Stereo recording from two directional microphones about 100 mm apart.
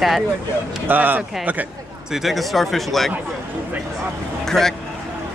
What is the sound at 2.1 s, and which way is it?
Speech, centre (ahead or behind).